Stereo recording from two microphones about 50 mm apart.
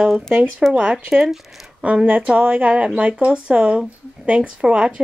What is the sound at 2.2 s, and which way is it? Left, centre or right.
Speech, right.